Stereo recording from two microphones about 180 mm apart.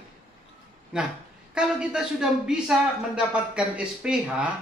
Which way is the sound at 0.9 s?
5° right (ahead or behind).